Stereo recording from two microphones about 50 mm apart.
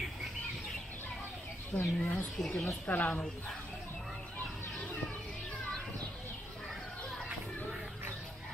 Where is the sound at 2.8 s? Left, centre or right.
Left.